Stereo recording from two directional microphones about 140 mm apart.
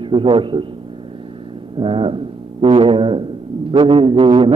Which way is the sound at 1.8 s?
40° right (ahead or behind).